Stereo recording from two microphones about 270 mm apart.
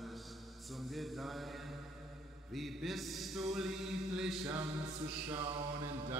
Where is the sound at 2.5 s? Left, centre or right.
Centre.